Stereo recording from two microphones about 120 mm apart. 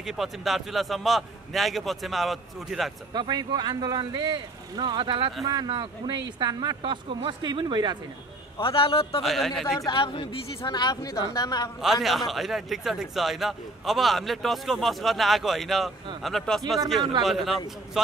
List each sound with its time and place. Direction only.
0.0 s a man's voice: centre (ahead or behind)
3.1 s speech: 35° right (ahead or behind)
8.5 s a man's voice: 50° left (ahead or behind)
9.2 s a man's voice: centre (ahead or behind)
9.9 s a man's voice: 45° left (ahead or behind)
11.8 s a man's voice: centre (ahead or behind)